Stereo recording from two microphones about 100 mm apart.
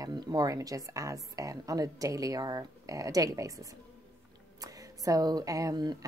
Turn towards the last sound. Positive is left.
turn(degrees=-40)  # may be behind; listen again after turning